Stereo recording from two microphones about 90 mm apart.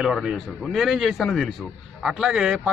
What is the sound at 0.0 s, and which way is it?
A man's voice, 5° right (ahead or behind).